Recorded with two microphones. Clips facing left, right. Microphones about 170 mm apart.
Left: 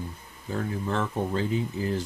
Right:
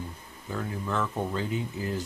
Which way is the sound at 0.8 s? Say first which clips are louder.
Even; 30° left (ahead or behind).